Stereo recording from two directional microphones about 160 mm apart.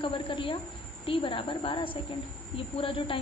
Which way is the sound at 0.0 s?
30° left (ahead or behind).